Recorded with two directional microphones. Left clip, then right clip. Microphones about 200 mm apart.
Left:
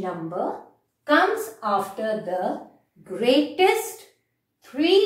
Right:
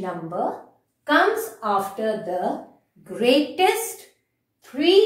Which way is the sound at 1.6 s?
10° right (ahead or behind).